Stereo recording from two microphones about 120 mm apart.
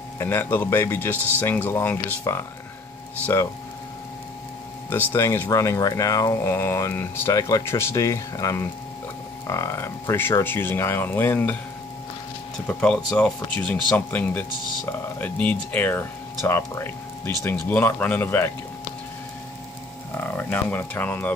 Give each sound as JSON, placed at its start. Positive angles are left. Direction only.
{"t": 0.2, "sound": "speech", "side_deg": 20}
{"t": 4.8, "sound": "speech", "side_deg": 20}
{"t": 12.6, "sound": "speech", "side_deg": 5}
{"t": 20.2, "sound": "speech", "side_deg": 15}